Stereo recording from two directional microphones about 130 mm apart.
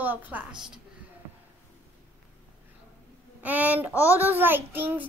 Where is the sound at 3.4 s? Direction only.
15° right (ahead or behind).